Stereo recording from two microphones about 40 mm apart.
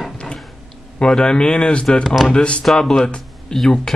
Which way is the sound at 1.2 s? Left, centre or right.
Left.